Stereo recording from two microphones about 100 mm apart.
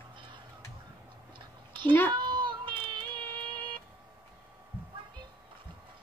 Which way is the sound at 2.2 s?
50° right (ahead or behind).